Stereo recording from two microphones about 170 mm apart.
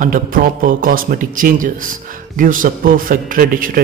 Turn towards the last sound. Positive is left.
turn(degrees=-55)  # may be behind; listen again after turning